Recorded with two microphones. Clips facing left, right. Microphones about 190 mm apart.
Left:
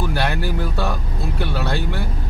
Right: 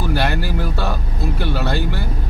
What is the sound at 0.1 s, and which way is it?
Speech, centre (ahead or behind).